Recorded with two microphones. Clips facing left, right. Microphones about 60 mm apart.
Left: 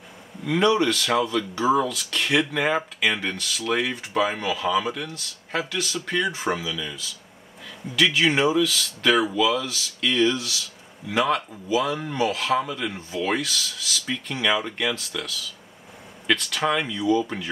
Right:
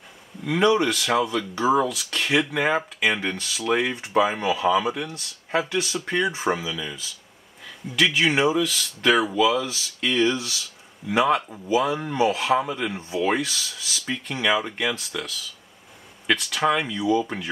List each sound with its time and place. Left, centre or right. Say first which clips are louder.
0.5 s speech: even; centre